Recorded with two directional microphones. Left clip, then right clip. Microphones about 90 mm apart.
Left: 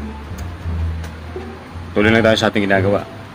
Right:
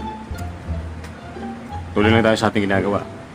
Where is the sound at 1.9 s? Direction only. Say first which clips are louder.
Left 3 dB; 20° right (ahead or behind).